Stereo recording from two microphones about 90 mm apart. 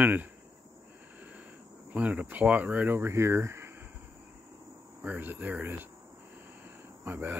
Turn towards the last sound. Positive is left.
turn(degrees=-20)  # may be behind; listen again after turning